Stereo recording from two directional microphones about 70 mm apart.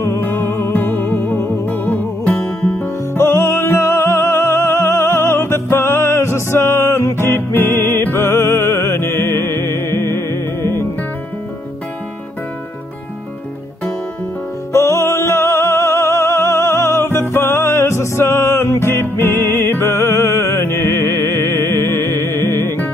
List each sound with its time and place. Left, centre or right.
0.0 s music: left
14.7 s music: left